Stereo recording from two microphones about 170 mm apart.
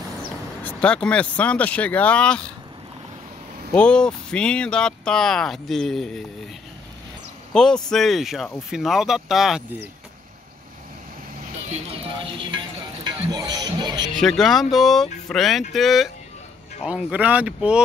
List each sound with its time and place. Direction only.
0.7 s speech: 5° left (ahead or behind)
3.7 s speech: 5° left (ahead or behind)
7.5 s speech: 5° left (ahead or behind)
12.4 s music: 25° right (ahead or behind)
14.2 s speech: centre (ahead or behind)